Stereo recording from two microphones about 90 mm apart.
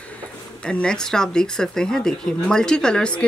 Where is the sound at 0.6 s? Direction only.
10° left (ahead or behind).